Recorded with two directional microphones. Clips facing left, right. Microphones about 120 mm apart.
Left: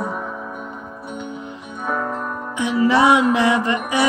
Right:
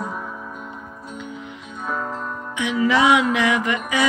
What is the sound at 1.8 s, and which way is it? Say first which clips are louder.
Music: left 4 dB; 60° left (ahead or behind).